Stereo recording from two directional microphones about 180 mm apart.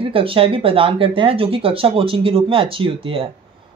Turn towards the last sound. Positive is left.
turn(degrees=-30)  # may be behind; listen again after turning